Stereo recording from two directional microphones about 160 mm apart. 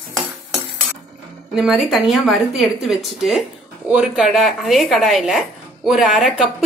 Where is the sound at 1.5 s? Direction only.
Centre (ahead or behind).